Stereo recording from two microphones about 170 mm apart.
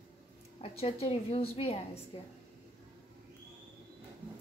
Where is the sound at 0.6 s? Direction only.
35° left (ahead or behind).